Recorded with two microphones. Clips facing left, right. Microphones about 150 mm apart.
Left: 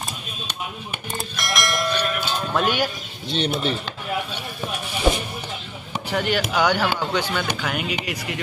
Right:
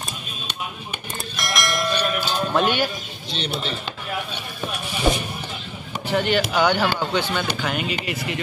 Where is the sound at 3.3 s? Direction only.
55° left (ahead or behind).